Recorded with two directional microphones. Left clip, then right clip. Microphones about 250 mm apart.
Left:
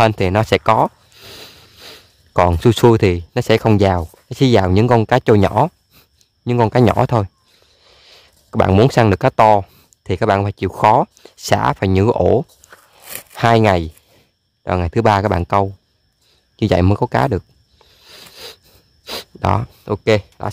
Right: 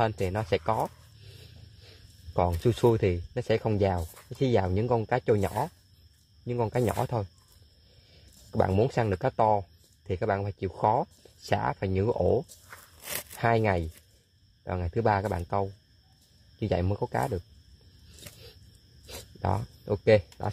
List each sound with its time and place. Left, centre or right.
0.0 s speech: left
8.5 s speech: left
12.7 s a sound: centre
13.4 s speech: left
19.0 s speech: left